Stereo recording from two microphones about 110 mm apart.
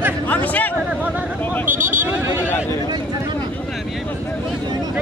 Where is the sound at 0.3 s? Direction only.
15° left (ahead or behind).